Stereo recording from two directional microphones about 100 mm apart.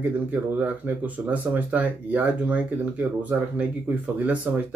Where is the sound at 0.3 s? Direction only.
15° right (ahead or behind).